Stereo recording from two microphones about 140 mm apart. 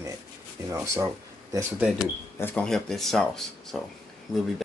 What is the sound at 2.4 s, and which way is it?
Speech, 15° left (ahead or behind).